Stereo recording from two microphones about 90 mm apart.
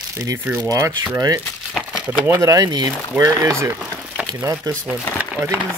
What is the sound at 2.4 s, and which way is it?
Speech, 35° right (ahead or behind).